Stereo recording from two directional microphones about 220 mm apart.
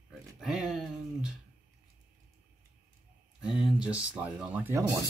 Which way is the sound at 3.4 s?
5° right (ahead or behind).